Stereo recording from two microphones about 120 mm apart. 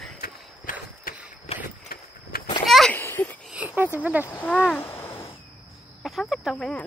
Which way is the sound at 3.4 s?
10° right (ahead or behind).